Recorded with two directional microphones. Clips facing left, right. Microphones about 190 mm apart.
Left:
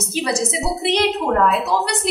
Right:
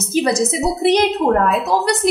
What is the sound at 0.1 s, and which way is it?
A woman's voice, 45° right (ahead or behind).